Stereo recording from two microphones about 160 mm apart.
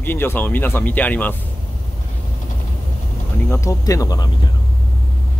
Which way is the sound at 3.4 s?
15° left (ahead or behind).